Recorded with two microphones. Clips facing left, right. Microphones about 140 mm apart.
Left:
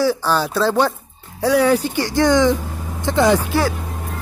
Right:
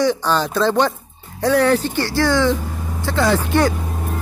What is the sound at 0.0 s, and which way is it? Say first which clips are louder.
Speech: even; 5° left (ahead or behind).